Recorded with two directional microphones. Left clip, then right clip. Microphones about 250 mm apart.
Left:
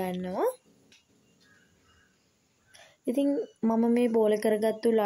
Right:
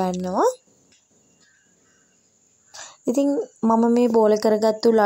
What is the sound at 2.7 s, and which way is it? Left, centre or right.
Throat clearing, right.